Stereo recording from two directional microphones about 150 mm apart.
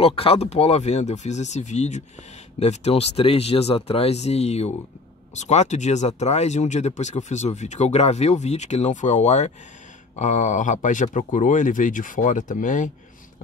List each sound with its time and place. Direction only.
0.0 s speech: 40° left (ahead or behind); by 12.9 s 60° left (ahead or behind)